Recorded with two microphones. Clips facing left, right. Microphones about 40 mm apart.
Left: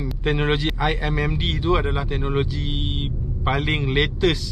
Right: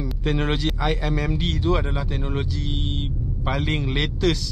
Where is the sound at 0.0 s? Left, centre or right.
Centre.